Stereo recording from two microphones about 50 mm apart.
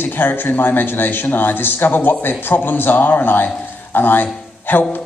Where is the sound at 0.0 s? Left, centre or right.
Left.